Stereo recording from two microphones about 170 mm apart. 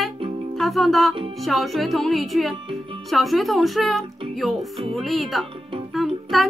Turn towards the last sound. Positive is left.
turn(degrees=0)  # may be behind; listen again after turning